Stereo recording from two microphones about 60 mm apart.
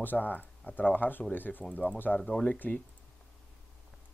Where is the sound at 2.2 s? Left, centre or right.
Centre.